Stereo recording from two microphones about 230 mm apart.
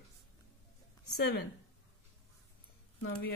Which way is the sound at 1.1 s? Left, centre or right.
Left.